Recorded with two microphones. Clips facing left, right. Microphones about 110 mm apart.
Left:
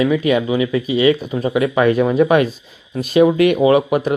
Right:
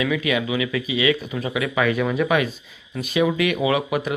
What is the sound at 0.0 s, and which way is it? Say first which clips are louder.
Speech: left 7 dB; 35° left (ahead or behind).